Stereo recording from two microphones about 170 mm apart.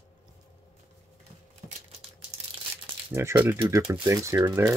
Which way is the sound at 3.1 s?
10° right (ahead or behind).